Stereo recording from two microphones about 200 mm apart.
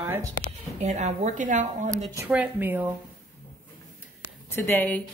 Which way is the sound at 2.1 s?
10° right (ahead or behind).